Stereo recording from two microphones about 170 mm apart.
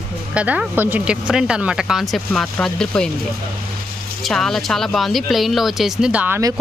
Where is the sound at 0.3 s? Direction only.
5° right (ahead or behind).